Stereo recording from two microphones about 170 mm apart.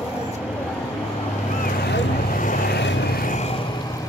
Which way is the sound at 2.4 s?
65° left (ahead or behind).